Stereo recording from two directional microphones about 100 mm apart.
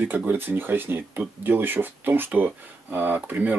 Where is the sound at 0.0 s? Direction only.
20° right (ahead or behind).